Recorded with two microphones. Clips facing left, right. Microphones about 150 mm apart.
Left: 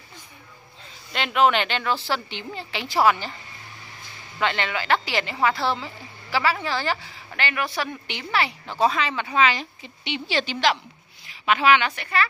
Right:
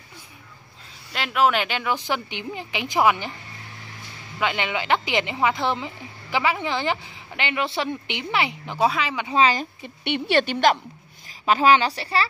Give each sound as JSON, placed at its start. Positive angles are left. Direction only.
{"t": 1.1, "sound": "speech", "side_deg": -5}
{"t": 4.4, "sound": "speech", "side_deg": -10}
{"t": 9.3, "sound": "a woman's voice", "side_deg": -35}
{"t": 10.0, "sound": "a woman's voice", "side_deg": -60}
{"t": 11.2, "sound": "a woman's voice", "side_deg": -35}